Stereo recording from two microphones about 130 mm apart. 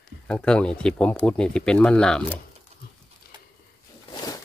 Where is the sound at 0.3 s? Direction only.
5° left (ahead or behind).